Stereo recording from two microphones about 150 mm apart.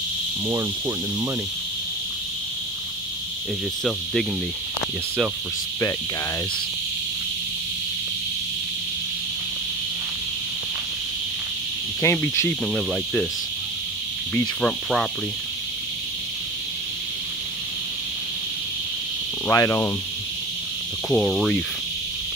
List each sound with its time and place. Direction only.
0.5 s cricket: 20° right (ahead or behind)
3.8 s cricket: centre (ahead or behind)
12.0 s speech: 15° left (ahead or behind)
12.7 s cricket: 5° left (ahead or behind)
14.6 s cricket: 5° left (ahead or behind)
19.4 s speech: 20° left (ahead or behind)
21.1 s cricket: centre (ahead or behind)